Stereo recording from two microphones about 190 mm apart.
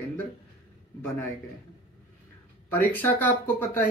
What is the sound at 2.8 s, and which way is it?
Speech, 10° left (ahead or behind).